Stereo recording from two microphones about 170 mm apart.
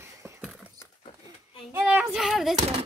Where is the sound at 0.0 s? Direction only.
15° right (ahead or behind).